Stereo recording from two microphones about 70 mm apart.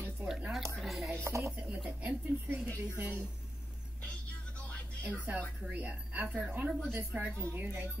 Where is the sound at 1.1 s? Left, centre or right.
Right.